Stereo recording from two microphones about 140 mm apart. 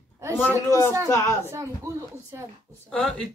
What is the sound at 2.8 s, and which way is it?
Speech, 5° left (ahead or behind).